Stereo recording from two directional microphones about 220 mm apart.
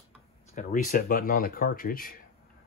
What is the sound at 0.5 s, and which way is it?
Speech, 35° left (ahead or behind).